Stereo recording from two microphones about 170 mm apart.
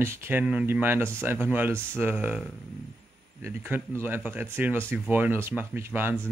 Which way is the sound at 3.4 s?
15° right (ahead or behind).